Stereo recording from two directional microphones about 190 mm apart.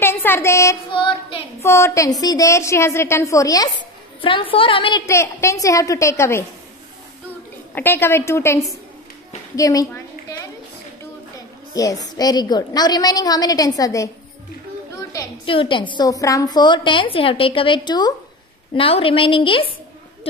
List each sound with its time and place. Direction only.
0.0 s a sound: 10° left (ahead or behind)
1.6 s a woman's voice: 15° left (ahead or behind)
5.0 s a woman's voice: 15° left (ahead or behind)
7.7 s a woman's voice: 10° left (ahead or behind)
9.6 s a sound: 15° left (ahead or behind)
11.3 s a woman's voice: 20° left (ahead or behind)
15.4 s a woman's voice: 25° left (ahead or behind)